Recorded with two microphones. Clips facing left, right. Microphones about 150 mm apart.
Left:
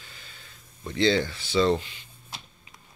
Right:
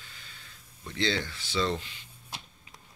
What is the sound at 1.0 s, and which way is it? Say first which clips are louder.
Speech: left 7 dB; 20° left (ahead or behind).